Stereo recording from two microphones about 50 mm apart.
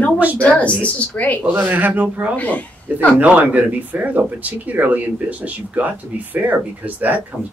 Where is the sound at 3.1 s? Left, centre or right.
Right.